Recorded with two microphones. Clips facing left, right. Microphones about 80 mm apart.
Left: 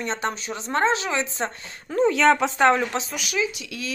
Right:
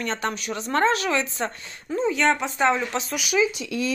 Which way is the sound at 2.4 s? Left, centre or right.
Left.